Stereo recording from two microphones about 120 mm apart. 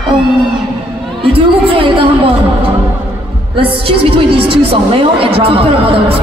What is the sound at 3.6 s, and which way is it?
A woman's voice, 50° right (ahead or behind).